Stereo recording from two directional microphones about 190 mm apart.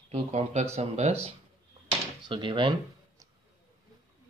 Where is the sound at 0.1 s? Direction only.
35° right (ahead or behind).